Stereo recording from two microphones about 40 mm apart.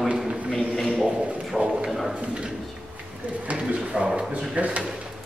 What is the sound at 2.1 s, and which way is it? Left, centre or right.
Speech, right.